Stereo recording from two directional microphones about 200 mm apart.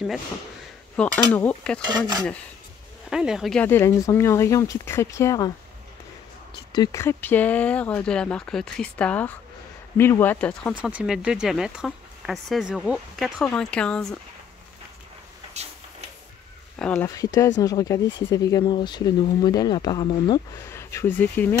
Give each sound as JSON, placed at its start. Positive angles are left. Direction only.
{"t": 0.9, "sound": "speech", "side_deg": 5}
{"t": 1.9, "sound": "speech", "side_deg": -20}
{"t": 3.1, "sound": "speech", "side_deg": -5}
{"t": 6.7, "sound": "speech", "side_deg": 20}
{"t": 10.7, "sound": "speech", "side_deg": -5}
{"t": 16.7, "sound": "speech", "side_deg": 5}
{"t": 17.1, "sound": "speech", "side_deg": 15}